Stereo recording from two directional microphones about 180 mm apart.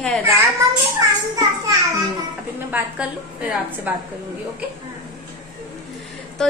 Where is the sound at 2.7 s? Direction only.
10° right (ahead or behind).